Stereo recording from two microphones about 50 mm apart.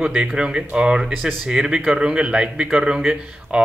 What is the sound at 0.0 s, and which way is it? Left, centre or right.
Speech, right.